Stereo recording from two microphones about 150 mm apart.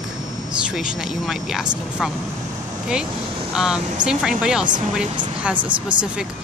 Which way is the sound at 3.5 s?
5° right (ahead or behind).